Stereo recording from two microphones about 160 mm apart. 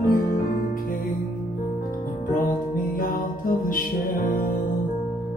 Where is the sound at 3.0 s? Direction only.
60° left (ahead or behind).